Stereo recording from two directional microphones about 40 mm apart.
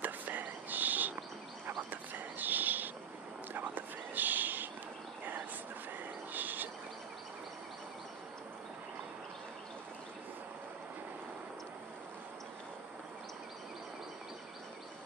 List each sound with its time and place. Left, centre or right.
0.0 s whispering: right
1.8 s a sound: right
6.3 s bird: right